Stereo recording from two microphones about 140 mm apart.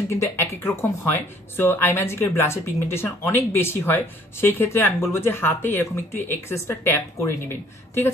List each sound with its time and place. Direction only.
0.1 s a woman's voice: 20° left (ahead or behind)